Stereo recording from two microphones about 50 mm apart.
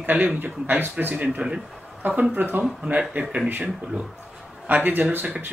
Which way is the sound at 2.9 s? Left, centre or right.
Right.